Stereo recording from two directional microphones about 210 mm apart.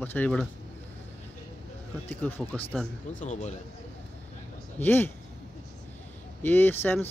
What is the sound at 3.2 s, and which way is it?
Speech, 35° left (ahead or behind).